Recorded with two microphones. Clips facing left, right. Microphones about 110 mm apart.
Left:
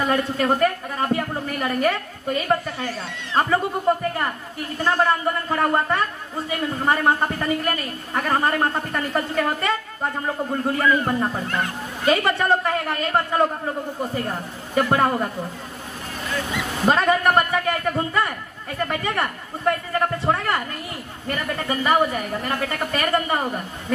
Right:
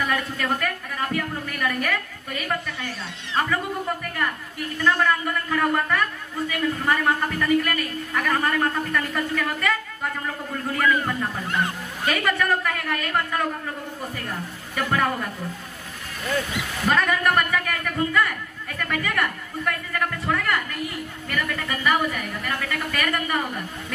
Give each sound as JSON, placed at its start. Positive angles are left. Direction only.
{"t": 0.0, "sound": "a man's voice", "side_deg": 30}
{"t": 16.8, "sound": "a man's voice", "side_deg": 30}